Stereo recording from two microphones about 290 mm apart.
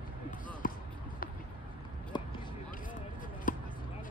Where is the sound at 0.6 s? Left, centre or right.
Left.